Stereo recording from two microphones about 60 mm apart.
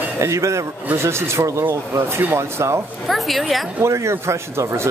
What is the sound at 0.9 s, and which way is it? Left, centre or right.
A man's voice, right.